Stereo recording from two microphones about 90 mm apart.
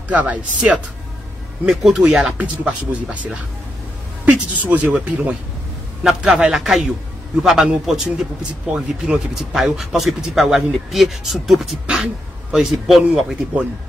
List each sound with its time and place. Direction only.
0.1 s speech: 15° right (ahead or behind)